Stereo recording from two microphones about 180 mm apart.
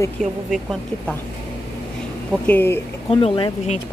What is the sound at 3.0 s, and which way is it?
Speech, 30° left (ahead or behind).